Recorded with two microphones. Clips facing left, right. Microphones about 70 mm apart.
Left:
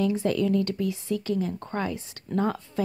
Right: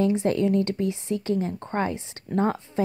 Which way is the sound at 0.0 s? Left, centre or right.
Right.